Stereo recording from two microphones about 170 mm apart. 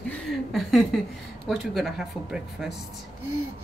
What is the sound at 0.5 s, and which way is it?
A woman's voice, centre (ahead or behind).